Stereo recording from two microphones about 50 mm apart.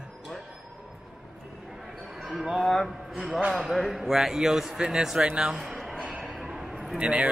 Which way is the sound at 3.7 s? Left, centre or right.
Centre.